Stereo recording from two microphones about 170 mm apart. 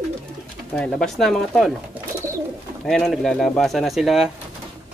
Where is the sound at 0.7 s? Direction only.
5° left (ahead or behind).